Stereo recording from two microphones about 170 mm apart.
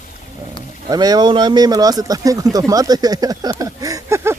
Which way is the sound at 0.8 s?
20° right (ahead or behind).